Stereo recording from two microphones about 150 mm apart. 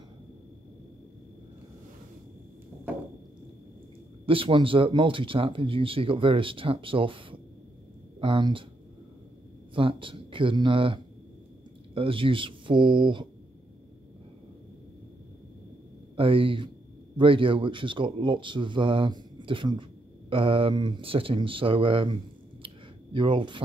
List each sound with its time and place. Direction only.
4.3 s speech: 35° right (ahead or behind)
9.8 s speech: 35° right (ahead or behind)
16.2 s speech: 35° right (ahead or behind)
23.1 s speech: 35° right (ahead or behind)